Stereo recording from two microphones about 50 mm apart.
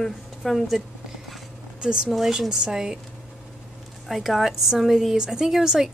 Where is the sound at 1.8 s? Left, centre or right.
Centre.